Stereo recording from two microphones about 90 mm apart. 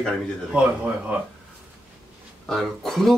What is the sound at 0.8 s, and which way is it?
Speech, 15° right (ahead or behind).